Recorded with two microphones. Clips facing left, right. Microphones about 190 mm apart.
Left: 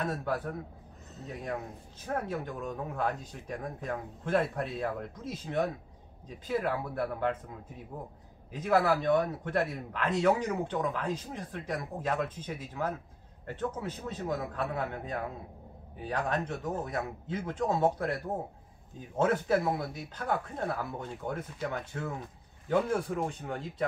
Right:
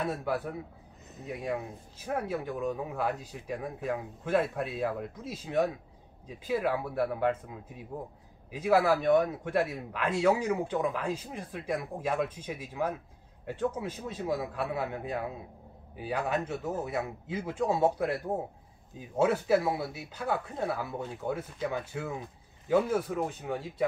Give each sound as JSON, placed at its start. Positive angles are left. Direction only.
{"t": 0.0, "sound": "speech", "side_deg": -10}
{"t": 8.5, "sound": "speech", "side_deg": -10}